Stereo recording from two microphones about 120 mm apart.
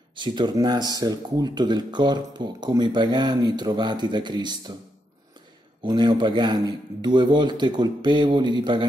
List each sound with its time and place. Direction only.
0.1 s speech: 40° right (ahead or behind)
5.9 s speech: 35° right (ahead or behind)